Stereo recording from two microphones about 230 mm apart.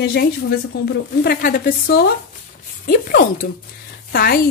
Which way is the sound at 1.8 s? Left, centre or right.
Left.